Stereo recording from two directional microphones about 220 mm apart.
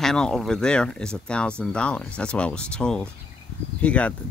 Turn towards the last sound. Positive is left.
turn(degrees=5)  # may be behind; listen again after turning